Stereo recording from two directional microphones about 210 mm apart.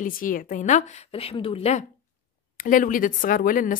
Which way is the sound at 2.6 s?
40° left (ahead or behind).